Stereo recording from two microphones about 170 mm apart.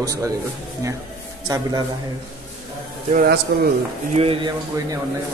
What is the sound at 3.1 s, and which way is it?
Speech, 60° right (ahead or behind).